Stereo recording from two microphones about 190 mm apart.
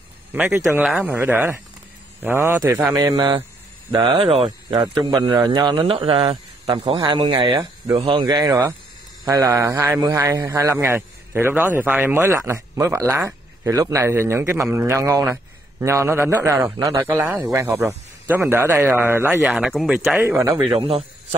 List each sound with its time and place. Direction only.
0.3 s a man's voice: 5° right (ahead or behind)
0.6 s a man's voice: 15° right (ahead or behind); by 4.7 s 30° right (ahead or behind)
4.7 s a man's voice: 20° right (ahead or behind)
8.4 s speech: 15° right (ahead or behind)
17.1 s speech: 10° right (ahead or behind)
20.2 s speech: 10° right (ahead or behind)
20.7 s a man's voice: 30° right (ahead or behind)